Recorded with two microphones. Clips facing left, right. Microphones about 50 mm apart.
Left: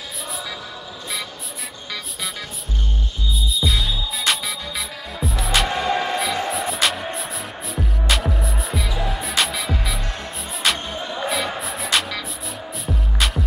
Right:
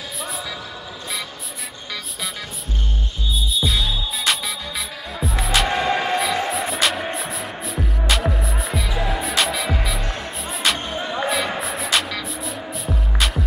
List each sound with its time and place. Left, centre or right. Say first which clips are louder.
3.3 s music: right 1 dB; centre
5.7 s music: right 1 dB; centre
6.1 s music: right 2 dB; centre
8.1 s music: right 1 dB; centre
11.0 s music: right 3 dB; right
11.2 s music: even; centre